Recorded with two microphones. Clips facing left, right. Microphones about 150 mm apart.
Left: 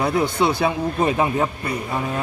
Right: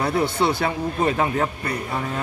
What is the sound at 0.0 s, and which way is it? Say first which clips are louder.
A man's voice: left 1 dB; 15° left (ahead or behind).